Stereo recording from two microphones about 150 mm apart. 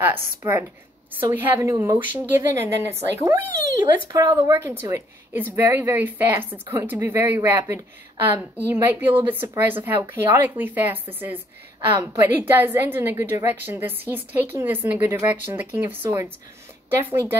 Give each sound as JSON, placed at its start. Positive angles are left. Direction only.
{"t": 0.0, "sound": "a woman's voice", "side_deg": -15}